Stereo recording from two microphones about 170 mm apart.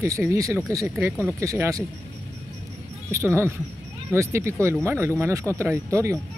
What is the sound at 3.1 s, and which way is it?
Speech, 15° right (ahead or behind).